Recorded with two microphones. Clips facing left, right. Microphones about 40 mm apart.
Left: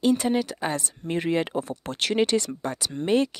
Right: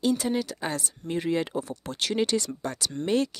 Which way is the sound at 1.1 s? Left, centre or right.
Left.